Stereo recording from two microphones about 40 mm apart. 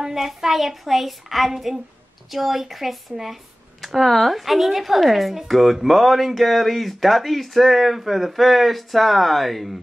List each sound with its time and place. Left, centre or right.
0.0 s speech: centre